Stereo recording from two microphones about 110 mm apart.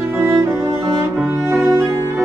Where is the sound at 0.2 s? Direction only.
30° right (ahead or behind).